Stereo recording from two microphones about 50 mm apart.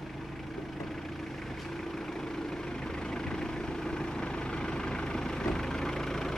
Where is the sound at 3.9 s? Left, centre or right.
Centre.